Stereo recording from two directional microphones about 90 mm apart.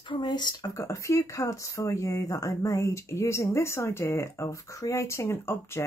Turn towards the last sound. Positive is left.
turn(degrees=30)  # may be behind; listen again after turning